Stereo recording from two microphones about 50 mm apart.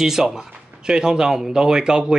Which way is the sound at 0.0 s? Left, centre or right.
Centre.